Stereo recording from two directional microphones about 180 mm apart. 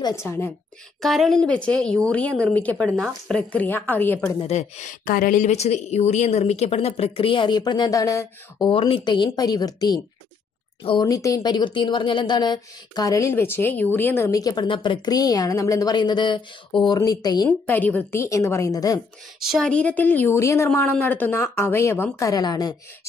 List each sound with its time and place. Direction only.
1.0 s a woman's voice: centre (ahead or behind)
4.4 s a woman's voice: 40° left (ahead or behind); by 17.5 s 20° left (ahead or behind)
17.5 s a woman's voice: 10° left (ahead or behind)
19.5 s a woman's voice: 5° left (ahead or behind); by 22.8 s 20° left (ahead or behind)